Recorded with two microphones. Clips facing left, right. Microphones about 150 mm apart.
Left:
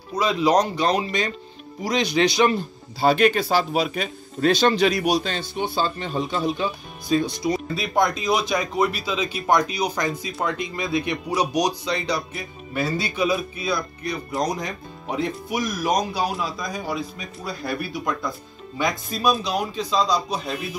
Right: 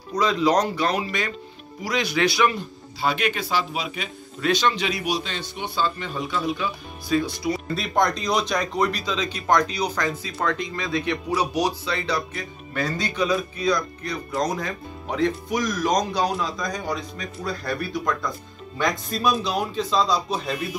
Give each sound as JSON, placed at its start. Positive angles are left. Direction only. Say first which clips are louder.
{"t": 0.1, "sound": "speech", "louder": "left 1 dB", "side_deg": 10}
{"t": 3.0, "sound": "a man's voice", "louder": "left 7 dB", "side_deg": 35}
{"t": 7.7, "sound": "speech", "louder": "right 2 dB", "side_deg": 0}